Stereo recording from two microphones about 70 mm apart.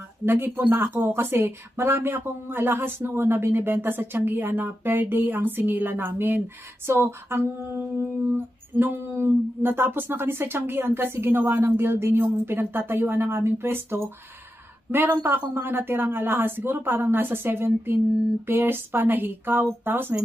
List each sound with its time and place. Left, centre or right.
0.2 s humming: right
18.5 s speech: right